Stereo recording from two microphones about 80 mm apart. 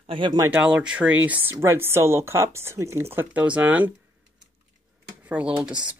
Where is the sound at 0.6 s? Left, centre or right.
Centre.